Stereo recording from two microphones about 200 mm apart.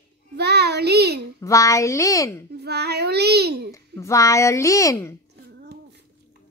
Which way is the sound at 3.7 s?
15° left (ahead or behind).